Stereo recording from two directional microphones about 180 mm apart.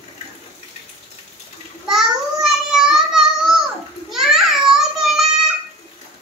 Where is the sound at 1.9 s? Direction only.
Centre (ahead or behind).